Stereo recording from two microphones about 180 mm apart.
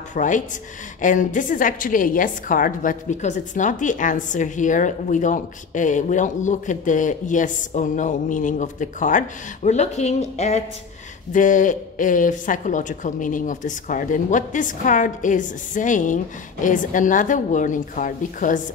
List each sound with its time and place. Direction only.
0.1 s a woman's voice: 45° left (ahead or behind)